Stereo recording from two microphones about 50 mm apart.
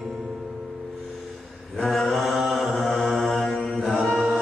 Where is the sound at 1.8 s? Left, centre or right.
Centre.